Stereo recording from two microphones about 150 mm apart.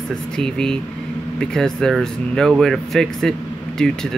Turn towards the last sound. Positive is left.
turn(degrees=5)  # may be behind; listen again after turning